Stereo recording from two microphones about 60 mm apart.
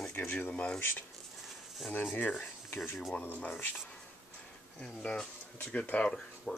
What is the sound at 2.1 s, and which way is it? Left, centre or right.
Speech, left.